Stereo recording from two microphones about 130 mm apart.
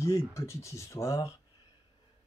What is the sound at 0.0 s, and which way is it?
Speech, 20° left (ahead or behind).